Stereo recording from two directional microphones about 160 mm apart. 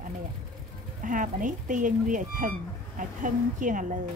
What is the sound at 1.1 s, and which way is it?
Speech, 55° right (ahead or behind).